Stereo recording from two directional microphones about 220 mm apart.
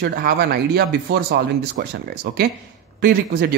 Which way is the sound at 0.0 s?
45° right (ahead or behind).